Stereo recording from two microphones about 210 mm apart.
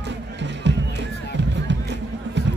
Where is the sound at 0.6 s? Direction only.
55° right (ahead or behind).